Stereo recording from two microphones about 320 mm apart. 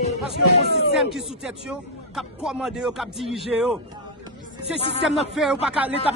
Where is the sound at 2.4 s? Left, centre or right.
Centre.